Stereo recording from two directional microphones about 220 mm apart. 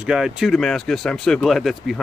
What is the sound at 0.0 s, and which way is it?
Speech, 5° right (ahead or behind).